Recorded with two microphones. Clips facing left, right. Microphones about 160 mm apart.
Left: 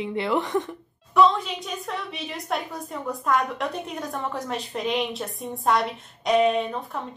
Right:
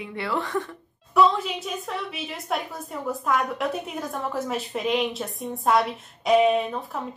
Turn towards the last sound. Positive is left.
turn(degrees=-5)  # may be behind; listen again after turning